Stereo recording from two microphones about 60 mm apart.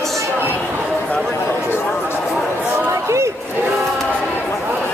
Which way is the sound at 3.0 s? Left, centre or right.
Right.